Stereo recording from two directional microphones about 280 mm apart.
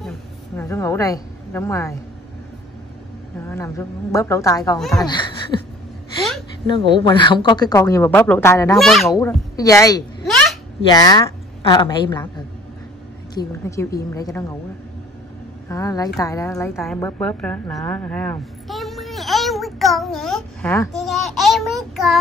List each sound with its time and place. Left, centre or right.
0.6 s speech: centre
3.4 s speech: centre
4.7 s child singing: centre
5.0 s speech: centre
6.7 s speech: centre
8.7 s child singing: centre
9.1 s speech: centre
10.2 s a sound: centre
10.9 s a woman's voice: centre
13.3 s speech: centre
15.7 s a woman's voice: centre
21.0 s child singing: centre